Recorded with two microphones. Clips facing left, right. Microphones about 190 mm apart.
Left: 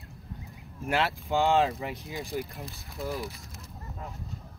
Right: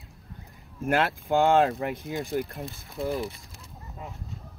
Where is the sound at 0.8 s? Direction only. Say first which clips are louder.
Right 4 dB; 50° right (ahead or behind).